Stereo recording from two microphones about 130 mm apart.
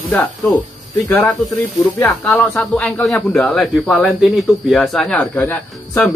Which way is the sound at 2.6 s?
10° left (ahead or behind).